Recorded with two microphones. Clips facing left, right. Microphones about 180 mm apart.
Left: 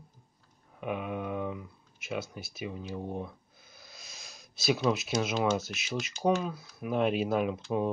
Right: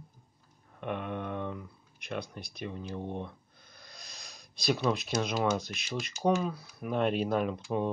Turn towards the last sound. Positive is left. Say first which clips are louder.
# left 1 dB
turn(degrees=5)  # may be behind; listen again after turning